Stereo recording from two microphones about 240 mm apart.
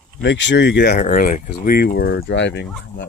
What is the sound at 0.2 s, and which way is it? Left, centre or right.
Speech, left.